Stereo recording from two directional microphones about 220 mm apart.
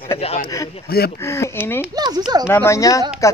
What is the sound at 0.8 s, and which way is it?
Speech, 45° left (ahead or behind).